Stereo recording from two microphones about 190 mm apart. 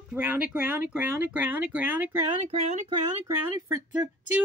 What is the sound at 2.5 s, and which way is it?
Speech, 35° right (ahead or behind).